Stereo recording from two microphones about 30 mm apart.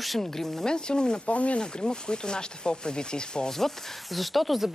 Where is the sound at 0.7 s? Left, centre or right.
Left.